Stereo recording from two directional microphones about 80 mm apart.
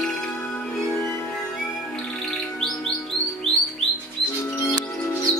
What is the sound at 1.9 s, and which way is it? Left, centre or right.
Music, centre.